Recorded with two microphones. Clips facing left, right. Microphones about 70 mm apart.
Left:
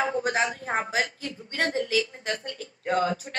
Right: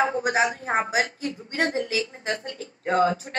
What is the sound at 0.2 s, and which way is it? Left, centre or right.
Speech, centre.